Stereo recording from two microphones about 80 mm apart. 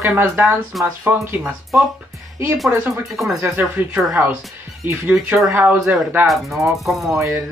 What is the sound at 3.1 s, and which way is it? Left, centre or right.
Speech, centre.